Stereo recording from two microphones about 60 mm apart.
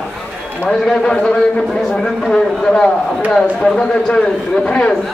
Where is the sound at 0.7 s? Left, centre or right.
Centre.